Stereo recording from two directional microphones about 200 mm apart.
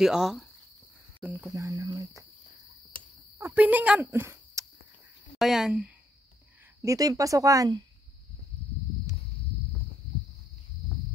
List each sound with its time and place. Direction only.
0.0 s speech: 5° right (ahead or behind)
1.5 s speech: 15° right (ahead or behind)
3.3 s speech: 10° right (ahead or behind)
5.4 s speech: 5° right (ahead or behind)
6.8 s speech: 15° right (ahead or behind)